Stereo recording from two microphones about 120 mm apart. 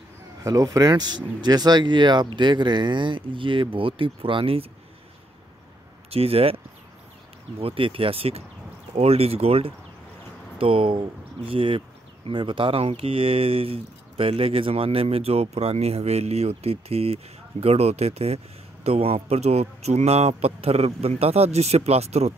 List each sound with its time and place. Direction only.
0.4 s speech: 30° right (ahead or behind); by 4.6 s 50° right (ahead or behind)
6.0 s speech: 55° right (ahead or behind)